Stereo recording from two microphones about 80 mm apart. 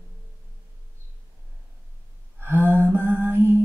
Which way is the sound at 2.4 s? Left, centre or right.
Right.